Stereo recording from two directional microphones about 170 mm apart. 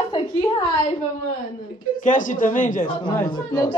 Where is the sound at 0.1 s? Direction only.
25° left (ahead or behind).